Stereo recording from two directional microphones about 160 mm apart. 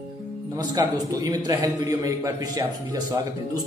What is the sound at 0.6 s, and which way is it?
Speech, 25° right (ahead or behind).